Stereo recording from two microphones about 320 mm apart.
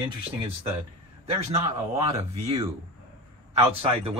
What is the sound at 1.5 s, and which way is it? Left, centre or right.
A man's voice, centre.